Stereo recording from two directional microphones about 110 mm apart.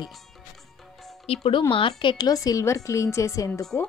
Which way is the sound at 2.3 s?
35° left (ahead or behind).